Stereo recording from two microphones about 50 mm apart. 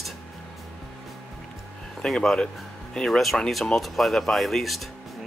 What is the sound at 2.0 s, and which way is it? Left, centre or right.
Speech, centre.